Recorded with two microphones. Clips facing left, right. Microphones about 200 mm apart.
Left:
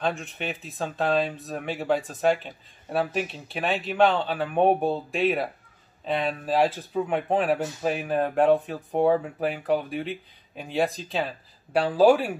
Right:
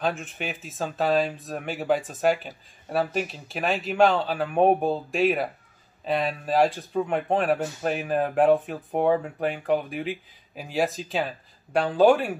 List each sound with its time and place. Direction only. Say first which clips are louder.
0.0 s speech: even; centre (ahead or behind)